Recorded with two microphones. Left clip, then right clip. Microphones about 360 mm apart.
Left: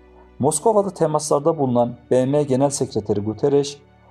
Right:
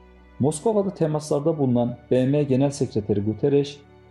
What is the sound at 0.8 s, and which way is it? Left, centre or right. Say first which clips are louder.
Speech: left 5 dB; centre.